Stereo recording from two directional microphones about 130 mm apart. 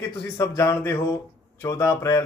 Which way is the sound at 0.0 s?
25° left (ahead or behind).